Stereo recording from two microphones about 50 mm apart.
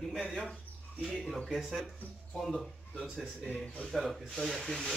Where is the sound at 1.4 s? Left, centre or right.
Centre.